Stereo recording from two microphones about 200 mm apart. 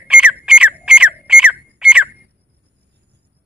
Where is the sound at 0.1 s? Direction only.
5° right (ahead or behind).